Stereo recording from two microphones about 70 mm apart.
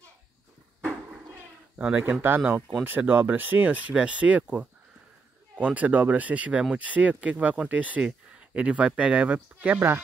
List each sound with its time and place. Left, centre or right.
1.8 s speech: right
9.8 s speech: right